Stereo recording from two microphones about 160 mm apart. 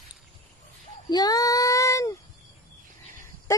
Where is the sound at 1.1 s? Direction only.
25° left (ahead or behind).